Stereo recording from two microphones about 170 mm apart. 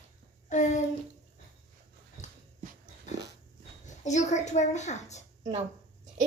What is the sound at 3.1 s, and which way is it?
Dog, 45° left (ahead or behind).